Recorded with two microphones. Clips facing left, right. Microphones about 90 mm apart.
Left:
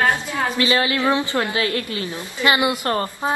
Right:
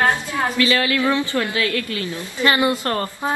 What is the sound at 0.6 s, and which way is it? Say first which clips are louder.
A woman's voice: even; 25° left (ahead or behind).